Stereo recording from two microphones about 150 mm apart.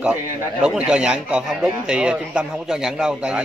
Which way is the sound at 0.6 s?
5° right (ahead or behind).